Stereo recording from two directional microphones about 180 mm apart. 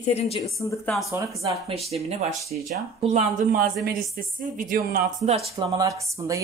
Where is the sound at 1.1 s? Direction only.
15° right (ahead or behind).